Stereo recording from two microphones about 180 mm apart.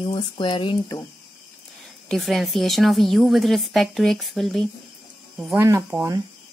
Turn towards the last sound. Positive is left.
turn(degrees=-15)  # may be behind; listen again after turning